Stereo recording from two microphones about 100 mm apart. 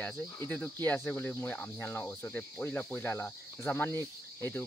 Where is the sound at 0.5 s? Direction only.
15° left (ahead or behind).